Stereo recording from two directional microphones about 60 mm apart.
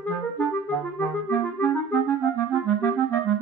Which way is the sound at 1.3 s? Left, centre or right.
Left.